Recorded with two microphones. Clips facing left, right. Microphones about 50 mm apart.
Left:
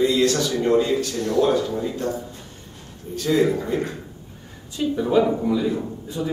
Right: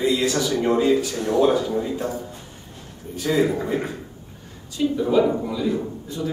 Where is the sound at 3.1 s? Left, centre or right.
Centre.